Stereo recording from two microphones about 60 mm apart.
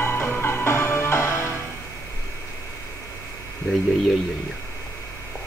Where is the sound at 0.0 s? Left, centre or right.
Left.